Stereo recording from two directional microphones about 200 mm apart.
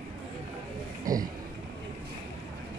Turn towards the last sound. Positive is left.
turn(degrees=-15)  # may be behind; listen again after turning